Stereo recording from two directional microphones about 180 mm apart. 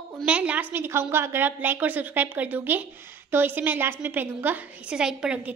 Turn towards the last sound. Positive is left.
turn(degrees=-5)  # may be behind; listen again after turning